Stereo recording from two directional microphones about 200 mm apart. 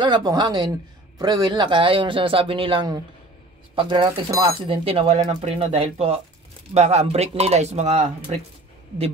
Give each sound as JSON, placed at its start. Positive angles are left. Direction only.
{"t": 0.0, "sound": "speech", "side_deg": -20}